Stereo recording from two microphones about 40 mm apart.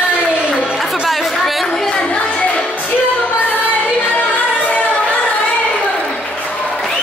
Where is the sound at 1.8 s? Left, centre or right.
Centre; by 3.0 s left.